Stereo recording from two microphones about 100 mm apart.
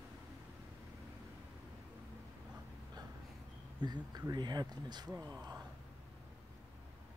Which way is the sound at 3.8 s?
45° right (ahead or behind).